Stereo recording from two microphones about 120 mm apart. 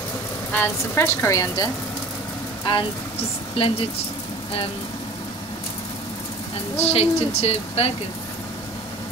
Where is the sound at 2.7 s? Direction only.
45° left (ahead or behind).